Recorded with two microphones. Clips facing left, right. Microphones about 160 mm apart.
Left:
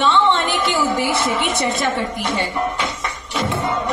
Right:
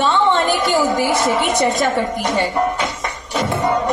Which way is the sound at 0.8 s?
40° right (ahead or behind).